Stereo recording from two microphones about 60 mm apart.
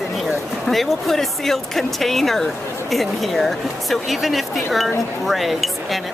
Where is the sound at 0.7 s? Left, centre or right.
Centre.